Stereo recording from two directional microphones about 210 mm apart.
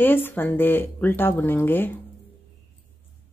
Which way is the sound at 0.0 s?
10° left (ahead or behind).